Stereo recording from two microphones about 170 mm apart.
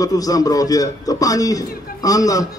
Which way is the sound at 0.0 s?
20° left (ahead or behind).